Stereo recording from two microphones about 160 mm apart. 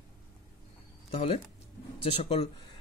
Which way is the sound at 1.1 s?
40° left (ahead or behind).